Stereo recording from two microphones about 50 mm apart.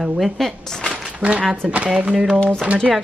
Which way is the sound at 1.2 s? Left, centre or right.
Right.